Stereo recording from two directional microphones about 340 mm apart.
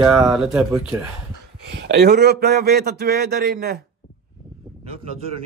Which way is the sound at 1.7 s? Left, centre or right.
Right.